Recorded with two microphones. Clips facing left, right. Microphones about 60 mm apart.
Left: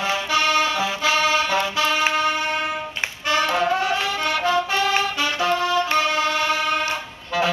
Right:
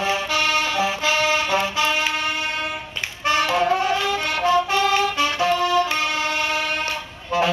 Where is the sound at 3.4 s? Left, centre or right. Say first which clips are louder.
Even; left.